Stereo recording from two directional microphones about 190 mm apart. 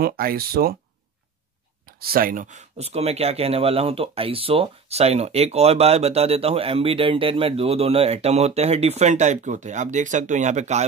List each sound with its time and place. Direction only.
0.0 s speech: 50° right (ahead or behind)
2.0 s speech: 50° right (ahead or behind)